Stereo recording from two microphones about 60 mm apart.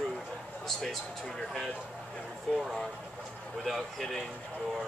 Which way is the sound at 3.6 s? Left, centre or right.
Centre.